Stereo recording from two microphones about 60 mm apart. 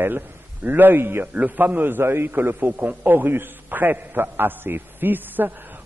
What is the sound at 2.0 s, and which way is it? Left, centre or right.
A man's voice, right.